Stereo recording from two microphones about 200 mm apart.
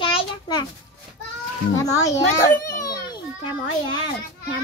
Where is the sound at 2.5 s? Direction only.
15° left (ahead or behind).